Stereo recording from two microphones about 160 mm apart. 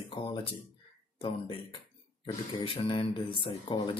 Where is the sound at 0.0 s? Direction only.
35° left (ahead or behind).